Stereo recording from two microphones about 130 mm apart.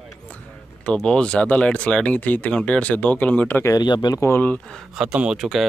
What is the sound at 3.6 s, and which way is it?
Speech, 30° left (ahead or behind).